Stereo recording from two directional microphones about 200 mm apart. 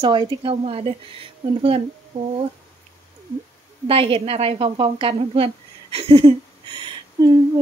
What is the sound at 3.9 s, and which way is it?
A woman's voice, 30° right (ahead or behind).